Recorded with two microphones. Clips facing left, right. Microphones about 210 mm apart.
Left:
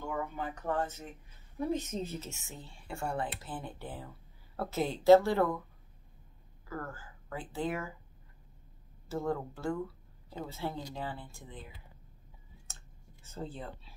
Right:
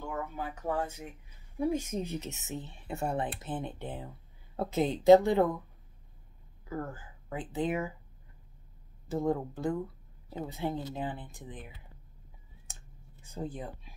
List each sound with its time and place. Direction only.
0.1 s speech: 5° right (ahead or behind)
6.7 s speech: 20° right (ahead or behind)
9.1 s speech: 20° right (ahead or behind)
12.7 s clicking: 15° right (ahead or behind)
13.2 s speech: 15° right (ahead or behind)